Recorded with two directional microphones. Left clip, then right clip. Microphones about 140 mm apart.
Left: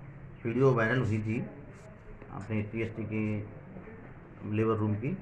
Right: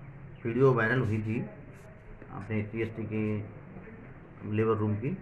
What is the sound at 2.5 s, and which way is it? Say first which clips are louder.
Speech: right 1 dB; 5° right (ahead or behind).